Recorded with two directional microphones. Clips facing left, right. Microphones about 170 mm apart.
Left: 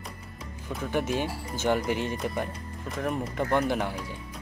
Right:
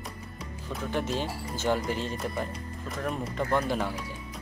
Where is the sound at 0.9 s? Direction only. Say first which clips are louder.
Left 3 dB; 10° left (ahead or behind).